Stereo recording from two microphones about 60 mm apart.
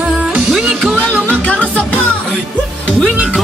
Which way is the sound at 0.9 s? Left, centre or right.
Centre.